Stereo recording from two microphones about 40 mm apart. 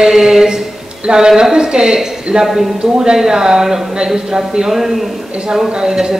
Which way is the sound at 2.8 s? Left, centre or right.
Right.